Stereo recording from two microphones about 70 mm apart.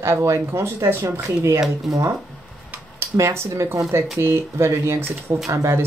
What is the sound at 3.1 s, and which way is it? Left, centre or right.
Speech, right.